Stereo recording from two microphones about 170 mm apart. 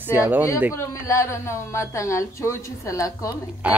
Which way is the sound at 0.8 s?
15° left (ahead or behind).